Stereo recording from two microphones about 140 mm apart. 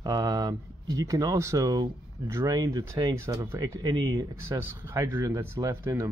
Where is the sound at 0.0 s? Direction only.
30° right (ahead or behind).